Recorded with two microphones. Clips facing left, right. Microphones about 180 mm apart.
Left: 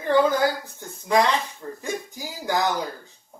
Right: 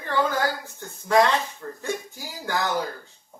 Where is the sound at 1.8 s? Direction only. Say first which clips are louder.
Even; 15° left (ahead or behind).